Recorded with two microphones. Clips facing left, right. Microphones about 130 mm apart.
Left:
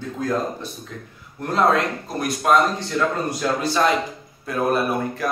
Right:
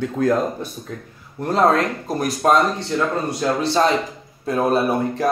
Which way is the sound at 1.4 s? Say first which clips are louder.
Right 2 dB; 40° right (ahead or behind).